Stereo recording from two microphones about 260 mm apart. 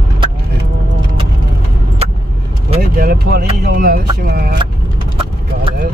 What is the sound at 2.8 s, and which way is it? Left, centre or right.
Speech, right.